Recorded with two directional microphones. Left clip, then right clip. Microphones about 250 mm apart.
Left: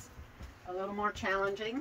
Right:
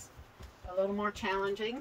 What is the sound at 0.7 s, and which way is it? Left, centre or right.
Speech, right.